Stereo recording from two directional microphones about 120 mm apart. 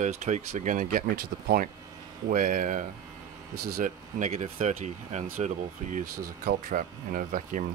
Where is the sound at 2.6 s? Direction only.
90° right.